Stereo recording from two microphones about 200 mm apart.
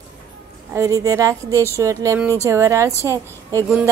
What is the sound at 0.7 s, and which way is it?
A woman's voice, 15° right (ahead or behind).